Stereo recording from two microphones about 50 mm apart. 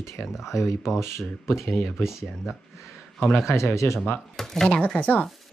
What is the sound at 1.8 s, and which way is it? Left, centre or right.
Speech, left.